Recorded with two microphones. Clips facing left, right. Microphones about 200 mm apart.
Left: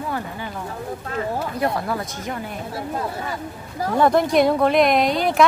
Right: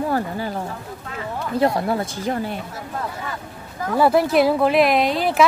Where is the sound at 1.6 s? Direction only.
30° right (ahead or behind).